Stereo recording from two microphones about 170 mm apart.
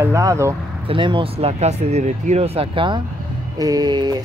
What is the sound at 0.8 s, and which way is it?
Speech, 30° right (ahead or behind).